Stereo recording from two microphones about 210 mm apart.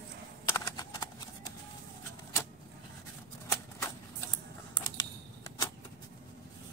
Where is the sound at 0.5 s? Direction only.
20° left (ahead or behind).